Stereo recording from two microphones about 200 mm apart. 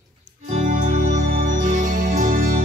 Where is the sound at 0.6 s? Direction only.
35° right (ahead or behind).